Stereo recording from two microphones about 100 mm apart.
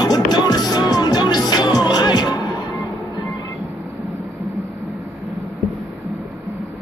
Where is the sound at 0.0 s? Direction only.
40° left (ahead or behind).